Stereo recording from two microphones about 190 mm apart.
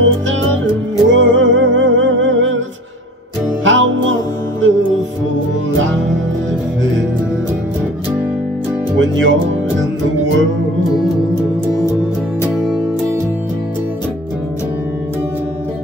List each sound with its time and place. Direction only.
0.0 s music: 90° right
3.6 s music: 85° right
9.0 s speech: 90° right
11.8 s music: 20° left (ahead or behind)
12.4 s music: 5° right (ahead or behind)